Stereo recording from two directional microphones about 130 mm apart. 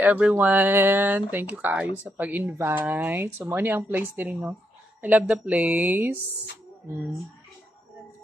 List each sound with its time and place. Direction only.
0.0 s speech: 10° right (ahead or behind)